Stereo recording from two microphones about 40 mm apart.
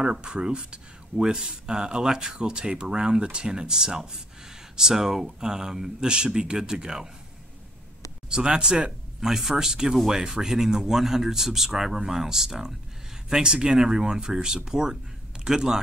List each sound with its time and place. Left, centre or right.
0.0 s speech: right
8.3 s speech: right